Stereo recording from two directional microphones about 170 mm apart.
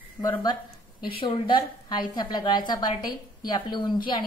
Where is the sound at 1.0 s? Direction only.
30° left (ahead or behind).